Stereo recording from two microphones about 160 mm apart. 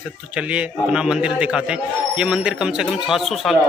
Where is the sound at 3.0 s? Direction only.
Centre (ahead or behind).